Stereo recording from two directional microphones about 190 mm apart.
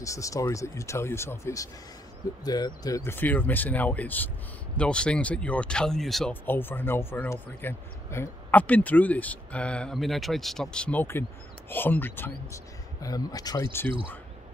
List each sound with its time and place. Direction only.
0.0 s speech: 15° left (ahead or behind)